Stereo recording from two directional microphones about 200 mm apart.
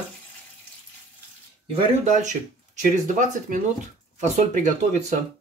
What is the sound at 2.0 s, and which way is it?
Speech, 40° right (ahead or behind).